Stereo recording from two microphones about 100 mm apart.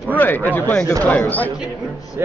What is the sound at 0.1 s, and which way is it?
Speech, 20° left (ahead or behind).